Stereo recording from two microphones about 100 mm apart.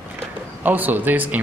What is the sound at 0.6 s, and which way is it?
Speech, 20° right (ahead or behind).